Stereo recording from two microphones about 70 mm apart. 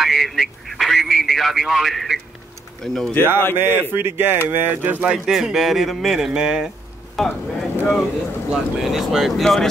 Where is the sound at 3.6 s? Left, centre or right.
Right.